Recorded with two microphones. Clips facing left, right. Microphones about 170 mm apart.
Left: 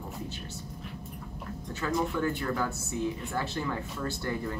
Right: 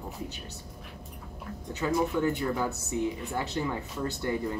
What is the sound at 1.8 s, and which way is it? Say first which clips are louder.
Speech: right 2 dB; 20° right (ahead or behind).